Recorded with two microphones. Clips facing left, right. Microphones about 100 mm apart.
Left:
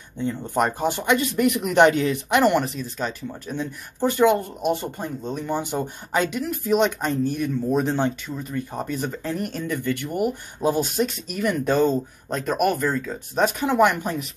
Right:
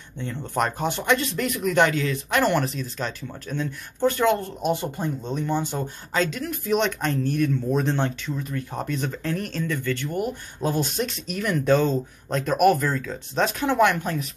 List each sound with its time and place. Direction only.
0.2 s speech: 10° left (ahead or behind)
1.7 s speech: 25° left (ahead or behind)
2.4 s speech: centre (ahead or behind)